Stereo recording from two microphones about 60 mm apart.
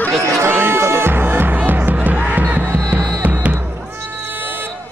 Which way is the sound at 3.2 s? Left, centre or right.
Right.